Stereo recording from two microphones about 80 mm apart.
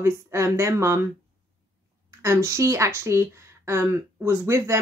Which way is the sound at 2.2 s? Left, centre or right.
Right.